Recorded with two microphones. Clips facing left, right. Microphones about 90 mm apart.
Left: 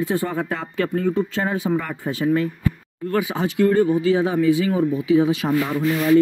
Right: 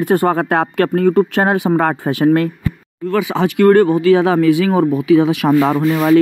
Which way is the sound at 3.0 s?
90° right.